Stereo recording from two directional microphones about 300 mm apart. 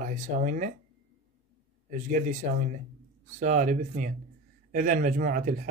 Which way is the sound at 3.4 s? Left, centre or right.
Right.